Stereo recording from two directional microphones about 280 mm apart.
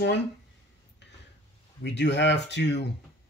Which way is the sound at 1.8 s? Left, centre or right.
Left.